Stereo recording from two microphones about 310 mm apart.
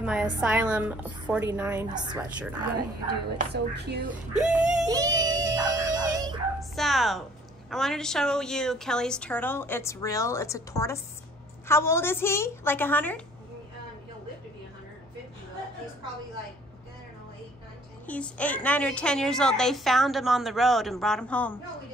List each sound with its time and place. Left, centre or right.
0.0 s a woman's voice: centre
3.3 s speech: right
4.4 s music: centre
6.6 s a woman's voice: centre
18.0 s a woman's voice: centre